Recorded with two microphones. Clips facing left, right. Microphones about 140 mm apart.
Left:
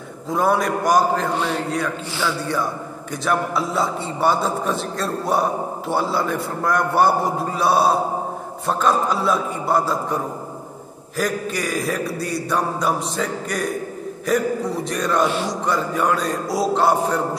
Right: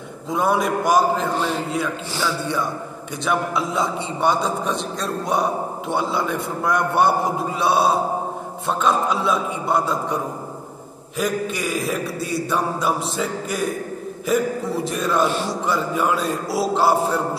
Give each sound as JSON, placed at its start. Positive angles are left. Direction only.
{"t": 0.3, "sound": "a man's voice", "side_deg": 0}
{"t": 2.4, "sound": "a man's voice", "side_deg": 0}